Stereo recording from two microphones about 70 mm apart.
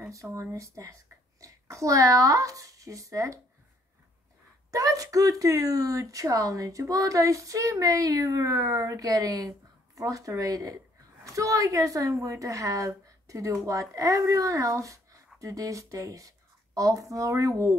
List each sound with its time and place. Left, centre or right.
0.0 s speech: right
4.6 s a woman's voice: right